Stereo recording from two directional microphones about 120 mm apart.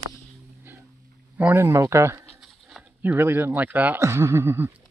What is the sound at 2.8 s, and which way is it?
Speech, 15° right (ahead or behind).